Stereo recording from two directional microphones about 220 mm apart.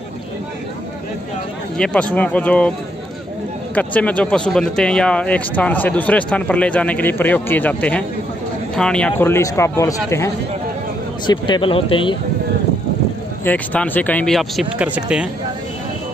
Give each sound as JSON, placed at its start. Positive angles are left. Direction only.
{"t": 1.8, "sound": "speech", "side_deg": 5}
{"t": 3.7, "sound": "speech", "side_deg": 5}
{"t": 13.4, "sound": "speech", "side_deg": 10}